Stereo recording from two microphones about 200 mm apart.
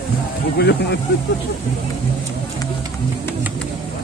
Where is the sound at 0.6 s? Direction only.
55° left (ahead or behind).